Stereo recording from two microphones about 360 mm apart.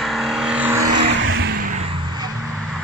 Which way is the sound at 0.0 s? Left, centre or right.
Centre.